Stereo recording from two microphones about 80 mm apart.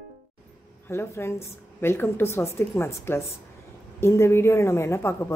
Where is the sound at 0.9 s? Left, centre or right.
Left.